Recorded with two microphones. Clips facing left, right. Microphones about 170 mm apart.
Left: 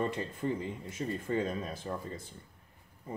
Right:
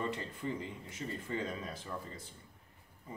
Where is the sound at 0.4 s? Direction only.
50° left (ahead or behind).